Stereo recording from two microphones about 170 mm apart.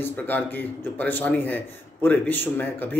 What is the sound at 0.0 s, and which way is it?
A man's voice, 10° left (ahead or behind).